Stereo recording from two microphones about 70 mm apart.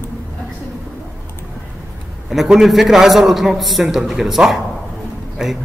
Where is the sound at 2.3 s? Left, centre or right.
Centre.